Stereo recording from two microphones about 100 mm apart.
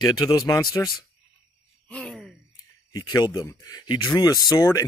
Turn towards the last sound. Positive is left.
turn(degrees=35)  # may be behind; listen again after turning